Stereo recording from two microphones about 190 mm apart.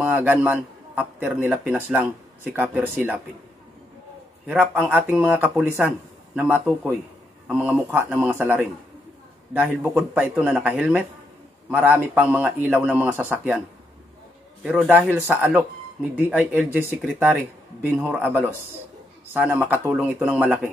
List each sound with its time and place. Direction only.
0.0 s a man's voice: 10° right (ahead or behind)
4.5 s speech: 5° right (ahead or behind)
14.6 s speech: 5° right (ahead or behind)
17.8 s speech: 10° right (ahead or behind)